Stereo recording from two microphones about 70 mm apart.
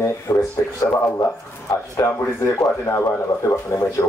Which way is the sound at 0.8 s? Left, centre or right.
Left.